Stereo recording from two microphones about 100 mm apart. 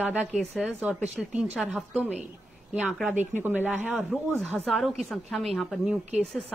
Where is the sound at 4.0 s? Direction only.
Centre (ahead or behind).